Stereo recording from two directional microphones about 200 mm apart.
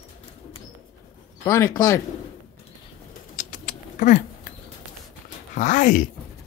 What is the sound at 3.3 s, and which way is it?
Rodents, 40° left (ahead or behind).